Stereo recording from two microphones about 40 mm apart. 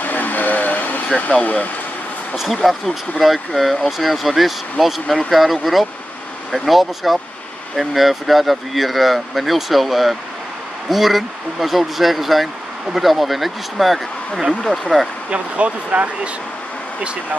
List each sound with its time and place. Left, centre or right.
0.0 s vehicle: left
1.4 s speech: left
2.3 s speech: centre
15.3 s speech: right